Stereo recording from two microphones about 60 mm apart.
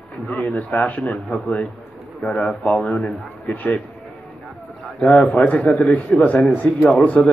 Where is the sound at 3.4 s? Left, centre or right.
Left.